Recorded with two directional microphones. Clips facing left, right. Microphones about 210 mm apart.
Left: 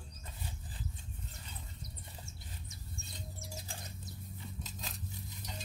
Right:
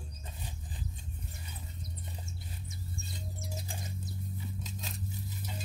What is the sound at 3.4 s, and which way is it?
Music, 20° right (ahead or behind).